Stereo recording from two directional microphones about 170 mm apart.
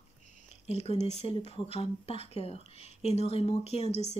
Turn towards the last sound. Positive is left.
turn(degrees=40)  # may be behind; listen again after turning